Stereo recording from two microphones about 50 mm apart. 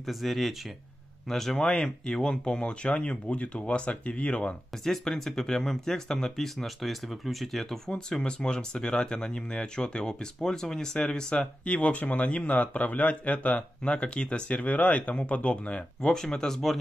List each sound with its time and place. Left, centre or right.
0.0 s speech: centre; by 4.6 s left
4.8 s speech: centre
7.9 s speech: centre
16.3 s speech: centre